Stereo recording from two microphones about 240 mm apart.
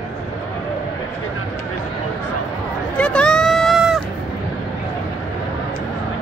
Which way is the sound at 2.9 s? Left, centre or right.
Centre.